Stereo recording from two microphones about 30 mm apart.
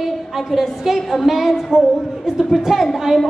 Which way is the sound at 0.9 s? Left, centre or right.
Centre.